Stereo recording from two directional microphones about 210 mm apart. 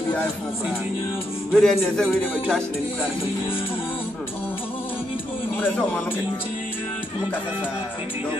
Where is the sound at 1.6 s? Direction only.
5° left (ahead or behind).